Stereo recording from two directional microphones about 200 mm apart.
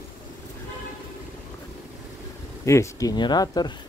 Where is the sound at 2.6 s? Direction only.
15° left (ahead or behind).